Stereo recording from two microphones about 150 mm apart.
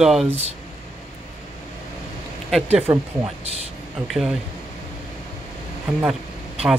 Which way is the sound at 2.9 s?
20° right (ahead or behind).